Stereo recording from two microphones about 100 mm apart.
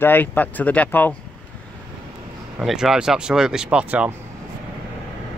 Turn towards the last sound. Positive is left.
turn(degrees=-10)  # may be behind; listen again after turning